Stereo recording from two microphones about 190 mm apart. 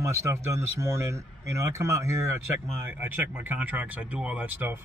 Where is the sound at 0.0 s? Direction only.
15° right (ahead or behind).